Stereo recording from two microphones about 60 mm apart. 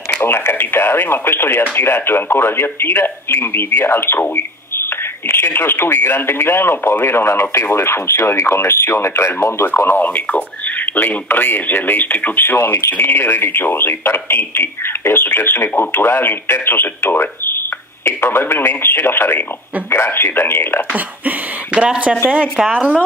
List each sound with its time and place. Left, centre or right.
0.2 s speech: left
9.8 s speech: left
20.9 s speech: right